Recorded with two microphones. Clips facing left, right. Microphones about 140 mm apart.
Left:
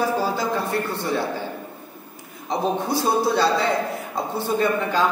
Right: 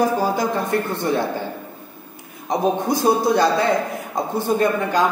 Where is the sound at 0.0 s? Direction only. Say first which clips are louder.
Right 3 dB; 15° right (ahead or behind).